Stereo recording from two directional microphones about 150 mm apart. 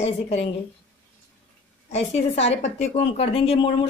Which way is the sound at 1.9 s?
45° left (ahead or behind).